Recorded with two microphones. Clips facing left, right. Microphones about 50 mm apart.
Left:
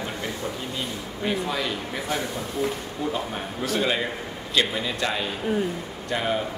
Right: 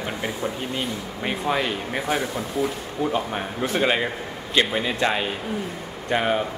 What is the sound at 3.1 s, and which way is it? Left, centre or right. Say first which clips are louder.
A man's voice: right 4 dB; right.